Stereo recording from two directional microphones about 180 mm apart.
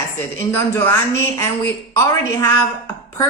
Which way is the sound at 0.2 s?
15° left (ahead or behind).